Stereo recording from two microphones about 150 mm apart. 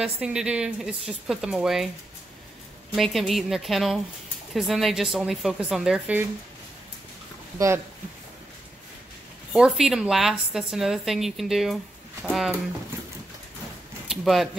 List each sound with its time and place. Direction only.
0.0 s a woman's voice: 5° right (ahead or behind)
3.0 s a woman's voice: centre (ahead or behind)
7.5 s speech: 20° right (ahead or behind)
9.5 s a woman's voice: 5° right (ahead or behind)
14.0 s speech: centre (ahead or behind)